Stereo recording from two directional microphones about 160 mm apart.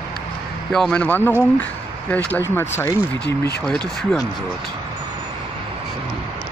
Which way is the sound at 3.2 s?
90° left.